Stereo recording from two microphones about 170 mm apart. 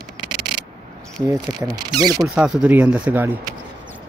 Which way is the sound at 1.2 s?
20° right (ahead or behind).